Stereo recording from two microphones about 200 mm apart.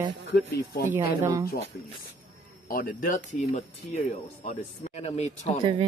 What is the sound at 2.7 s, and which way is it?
Speech, 45° left (ahead or behind).